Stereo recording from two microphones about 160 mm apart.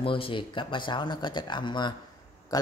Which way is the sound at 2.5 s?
25° left (ahead or behind).